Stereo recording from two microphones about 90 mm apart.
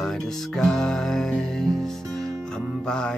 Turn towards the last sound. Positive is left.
turn(degrees=10)  # may be behind; listen again after turning